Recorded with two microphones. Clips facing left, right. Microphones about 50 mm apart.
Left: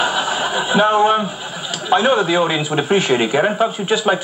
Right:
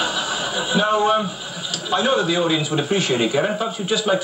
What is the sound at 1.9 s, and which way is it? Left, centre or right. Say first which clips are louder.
A man's voice: left 5 dB; left.